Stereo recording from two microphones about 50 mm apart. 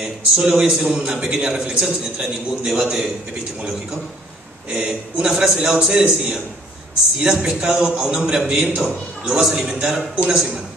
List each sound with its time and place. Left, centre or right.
0.0 s a man's voice: centre
4.7 s a man's voice: centre
5.8 s a man's voice: centre
7.2 s a man's voice: centre